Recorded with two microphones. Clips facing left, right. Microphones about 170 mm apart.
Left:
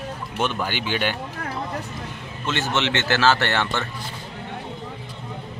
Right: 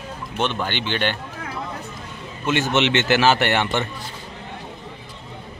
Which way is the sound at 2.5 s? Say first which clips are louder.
Right 4 dB; 15° right (ahead or behind).